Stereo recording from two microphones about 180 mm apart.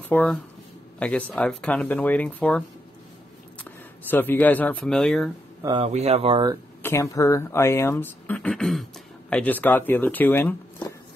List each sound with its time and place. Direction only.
0.1 s speech: 10° left (ahead or behind)
3.6 s speech: 10° left (ahead or behind)
5.6 s speech: 25° right (ahead or behind)
5.9 s speech: 35° right (ahead or behind)
6.8 s speech: 15° left (ahead or behind)